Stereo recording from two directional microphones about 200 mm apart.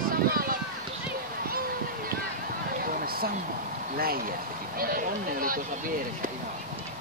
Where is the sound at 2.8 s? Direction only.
45° right (ahead or behind).